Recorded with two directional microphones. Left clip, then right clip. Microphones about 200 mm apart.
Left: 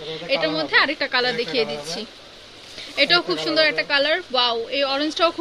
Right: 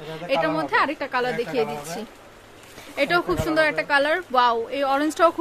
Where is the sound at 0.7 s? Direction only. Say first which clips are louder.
Left 3 dB; 10° right (ahead or behind).